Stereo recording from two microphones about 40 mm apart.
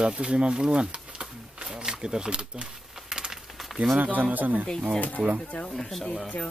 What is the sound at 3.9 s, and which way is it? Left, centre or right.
Speech, right.